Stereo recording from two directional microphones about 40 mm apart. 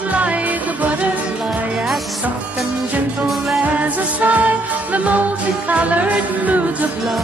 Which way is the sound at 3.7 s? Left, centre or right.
Right.